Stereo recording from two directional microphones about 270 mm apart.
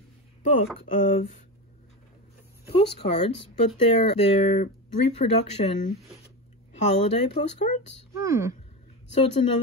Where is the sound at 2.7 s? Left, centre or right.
Left.